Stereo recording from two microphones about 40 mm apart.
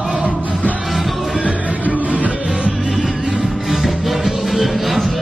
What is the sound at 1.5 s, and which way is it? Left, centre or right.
Music, right.